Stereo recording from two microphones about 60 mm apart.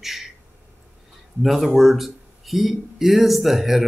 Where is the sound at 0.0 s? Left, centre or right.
Centre.